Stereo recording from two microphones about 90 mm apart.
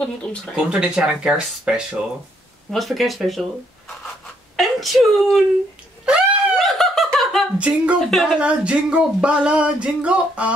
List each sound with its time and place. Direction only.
0.6 s speech: 10° right (ahead or behind)
4.6 s speech: centre (ahead or behind)
6.0 s laughter: centre (ahead or behind)
7.5 s speech: 15° right (ahead or behind)
8.1 s speech: centre (ahead or behind)
8.4 s speech: 15° right (ahead or behind)